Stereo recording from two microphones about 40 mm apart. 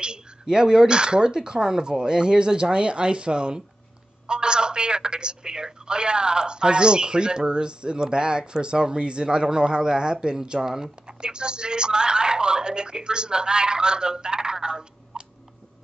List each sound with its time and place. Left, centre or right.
0.0 s speech: right